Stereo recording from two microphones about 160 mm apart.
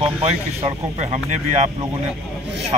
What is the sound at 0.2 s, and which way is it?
Speech, 40° right (ahead or behind).